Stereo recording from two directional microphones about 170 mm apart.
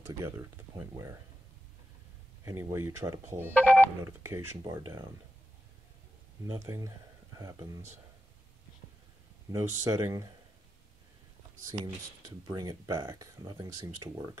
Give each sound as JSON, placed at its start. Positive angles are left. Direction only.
{"t": 0.2, "sound": "speech", "side_deg": -15}
{"t": 2.4, "sound": "speech", "side_deg": -15}
{"t": 3.5, "sound": "speech", "side_deg": 10}
{"t": 4.0, "sound": "speech", "side_deg": -15}
{"t": 6.4, "sound": "speech", "side_deg": -15}
{"t": 9.5, "sound": "speech", "side_deg": -20}
{"t": 11.8, "sound": "speech", "side_deg": -25}